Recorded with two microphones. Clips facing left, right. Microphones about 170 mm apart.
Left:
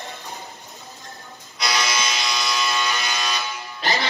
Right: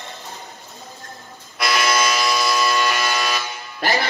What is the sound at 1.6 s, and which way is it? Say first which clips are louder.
Music: right 5 dB; 60° right (ahead or behind).